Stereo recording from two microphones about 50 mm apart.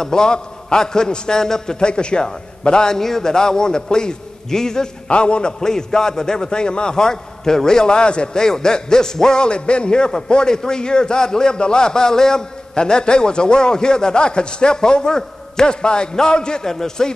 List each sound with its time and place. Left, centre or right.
0.0 s a man's voice: centre